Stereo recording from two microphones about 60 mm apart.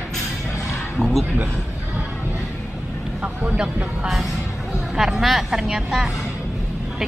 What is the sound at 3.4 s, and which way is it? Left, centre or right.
A woman's voice, centre.